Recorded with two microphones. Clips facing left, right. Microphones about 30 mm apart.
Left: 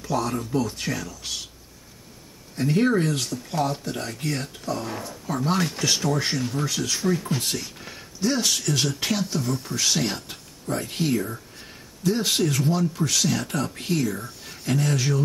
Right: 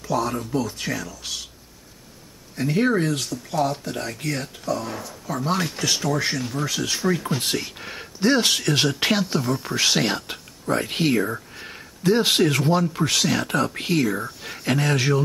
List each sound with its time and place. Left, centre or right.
0.0 s speech: centre
2.5 s speech: centre
6.6 s speech: centre
7.5 s speech: right